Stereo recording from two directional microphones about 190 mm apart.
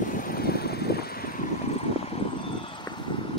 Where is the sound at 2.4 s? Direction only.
25° left (ahead or behind).